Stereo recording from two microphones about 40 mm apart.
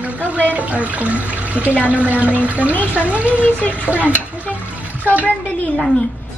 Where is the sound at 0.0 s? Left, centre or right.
Right.